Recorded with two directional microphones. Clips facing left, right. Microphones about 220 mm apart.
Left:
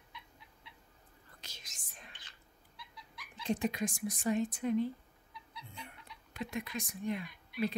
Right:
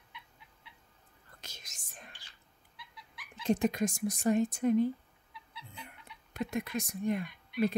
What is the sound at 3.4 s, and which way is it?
Speech, 45° right (ahead or behind).